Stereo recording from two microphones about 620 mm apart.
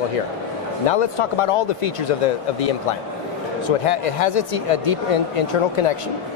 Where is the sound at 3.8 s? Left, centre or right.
Left.